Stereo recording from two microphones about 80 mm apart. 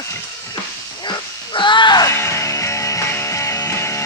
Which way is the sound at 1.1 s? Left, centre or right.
Left.